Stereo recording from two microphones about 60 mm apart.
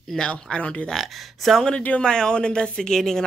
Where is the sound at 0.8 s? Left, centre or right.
Centre.